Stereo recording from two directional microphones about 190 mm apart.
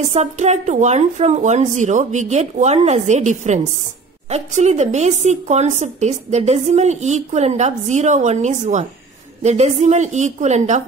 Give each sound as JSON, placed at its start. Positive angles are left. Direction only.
{"t": 0.1, "sound": "a woman's voice", "side_deg": -35}